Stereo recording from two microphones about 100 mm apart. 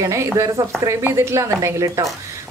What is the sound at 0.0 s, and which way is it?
A woman's voice, 30° right (ahead or behind).